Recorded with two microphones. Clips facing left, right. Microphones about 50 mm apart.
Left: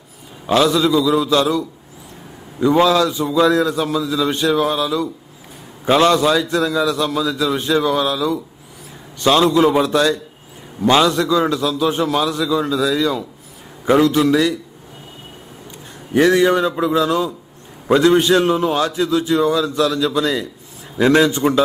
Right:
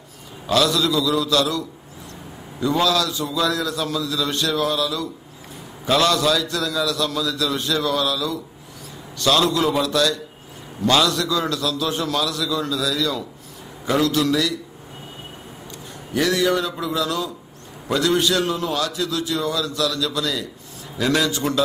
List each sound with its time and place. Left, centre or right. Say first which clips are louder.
0.5 s a man's voice: left 5 dB; left
2.6 s a man's voice: left 6 dB; left
16.1 s a man's voice: left 6 dB; left